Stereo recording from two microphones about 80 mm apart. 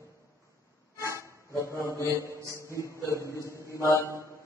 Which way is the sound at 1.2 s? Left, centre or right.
Left.